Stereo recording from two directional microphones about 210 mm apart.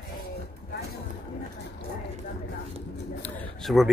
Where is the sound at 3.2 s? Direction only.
Centre (ahead or behind).